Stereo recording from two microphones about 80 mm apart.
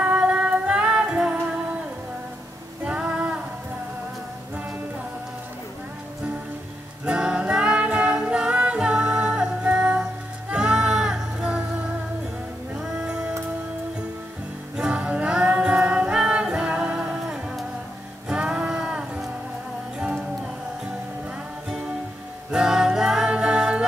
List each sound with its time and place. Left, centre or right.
0.0 s music: centre
2.8 s music: centre
7.1 s music: centre
12.7 s music: centre
14.8 s music: centre
22.5 s music: centre